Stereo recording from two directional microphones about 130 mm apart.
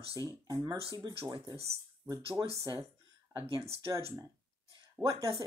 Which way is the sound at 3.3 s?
45° right (ahead or behind).